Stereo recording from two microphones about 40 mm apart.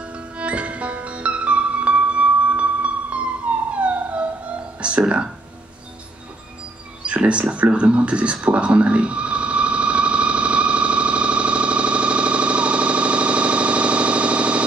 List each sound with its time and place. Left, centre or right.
0.4 s music: right
3.7 s police car: right
4.7 s speech: right
7.1 s a sound: right